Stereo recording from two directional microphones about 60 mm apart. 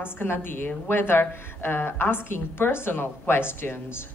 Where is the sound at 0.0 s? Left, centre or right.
Left.